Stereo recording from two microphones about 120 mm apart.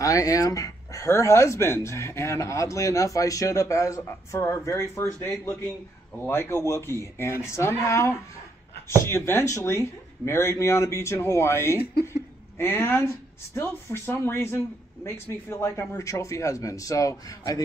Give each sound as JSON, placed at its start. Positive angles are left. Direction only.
{"t": 0.0, "sound": "speech", "side_deg": 30}